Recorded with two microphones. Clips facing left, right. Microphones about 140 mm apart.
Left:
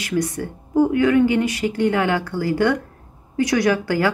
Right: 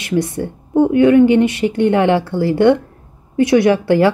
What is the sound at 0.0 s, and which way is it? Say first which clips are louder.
A woman's voice: right 4 dB; 25° right (ahead or behind).